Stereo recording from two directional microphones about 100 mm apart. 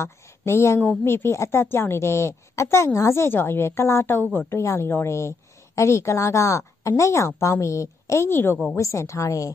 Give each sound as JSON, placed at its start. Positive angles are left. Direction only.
{"t": 0.0, "sound": "a woman's voice", "side_deg": 30}